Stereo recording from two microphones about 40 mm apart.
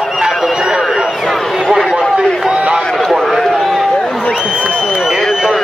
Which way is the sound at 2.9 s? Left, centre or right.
Centre.